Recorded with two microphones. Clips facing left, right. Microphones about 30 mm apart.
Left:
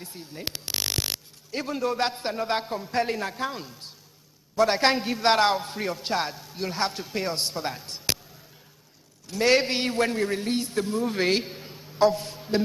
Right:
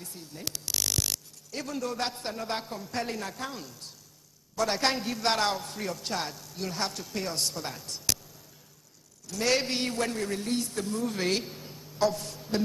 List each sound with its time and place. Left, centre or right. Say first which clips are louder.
0.0 s speech: left 4 dB; left
9.3 s speech: left 6 dB; left